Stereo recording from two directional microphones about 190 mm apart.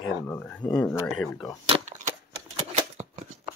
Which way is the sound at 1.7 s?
35° right (ahead or behind).